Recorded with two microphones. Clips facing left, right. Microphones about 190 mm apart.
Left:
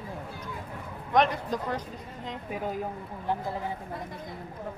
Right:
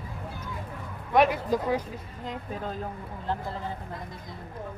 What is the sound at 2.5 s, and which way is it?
Speech, 10° left (ahead or behind).